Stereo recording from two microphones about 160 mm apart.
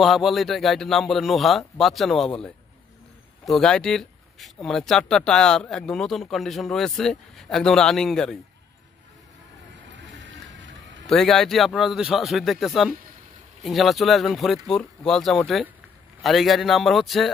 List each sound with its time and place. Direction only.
0.0 s speech: centre (ahead or behind)
9.9 s boat: 90° right
11.1 s speech: centre (ahead or behind)